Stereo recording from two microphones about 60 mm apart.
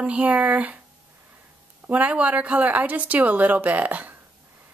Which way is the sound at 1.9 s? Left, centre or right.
Right.